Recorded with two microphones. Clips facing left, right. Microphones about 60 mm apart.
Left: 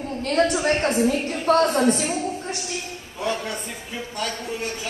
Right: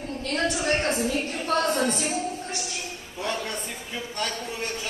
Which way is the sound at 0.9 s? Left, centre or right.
Left.